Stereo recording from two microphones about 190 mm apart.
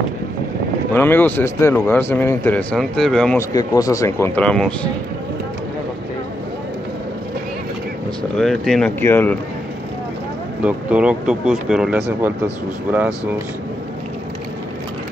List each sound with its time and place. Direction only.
0.9 s a man's voice: 10° left (ahead or behind)
3.3 s a man's voice: 20° left (ahead or behind)
4.4 s speech: 5° left (ahead or behind)
8.2 s speech: centre (ahead or behind)
10.6 s speech: 5° right (ahead or behind)